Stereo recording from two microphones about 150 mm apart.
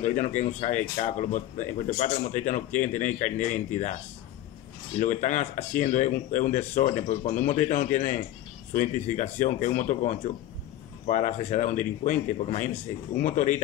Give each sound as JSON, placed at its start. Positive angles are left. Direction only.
{"t": 0.0, "sound": "speech", "side_deg": 50}
{"t": 5.0, "sound": "speech", "side_deg": 55}